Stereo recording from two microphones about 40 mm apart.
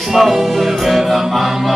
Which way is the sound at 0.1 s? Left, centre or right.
Centre.